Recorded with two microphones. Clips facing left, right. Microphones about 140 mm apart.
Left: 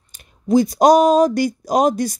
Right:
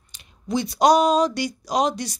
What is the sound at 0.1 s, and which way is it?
A woman's voice, 45° left (ahead or behind).